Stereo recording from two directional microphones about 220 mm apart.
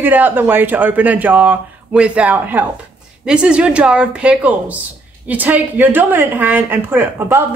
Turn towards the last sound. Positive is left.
turn(degrees=-10)  # may be behind; listen again after turning